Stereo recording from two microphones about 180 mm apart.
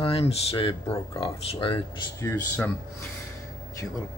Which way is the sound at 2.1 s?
15° left (ahead or behind).